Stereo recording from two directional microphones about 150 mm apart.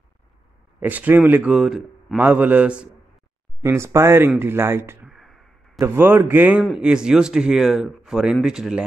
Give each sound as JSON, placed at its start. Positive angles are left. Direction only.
{"t": 0.7, "sound": "a man's voice", "side_deg": -10}
{"t": 5.0, "sound": "a sound", "side_deg": 0}
{"t": 5.8, "sound": "a man's voice", "side_deg": -15}